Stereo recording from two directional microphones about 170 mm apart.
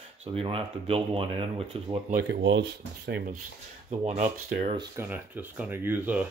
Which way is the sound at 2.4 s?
90° right.